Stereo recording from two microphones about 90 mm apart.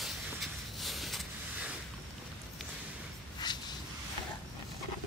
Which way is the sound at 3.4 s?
50° left (ahead or behind).